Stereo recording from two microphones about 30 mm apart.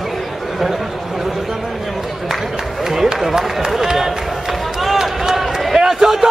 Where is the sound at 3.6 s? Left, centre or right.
Centre.